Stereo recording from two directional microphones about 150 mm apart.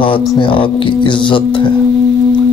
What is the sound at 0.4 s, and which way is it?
Music, 35° left (ahead or behind).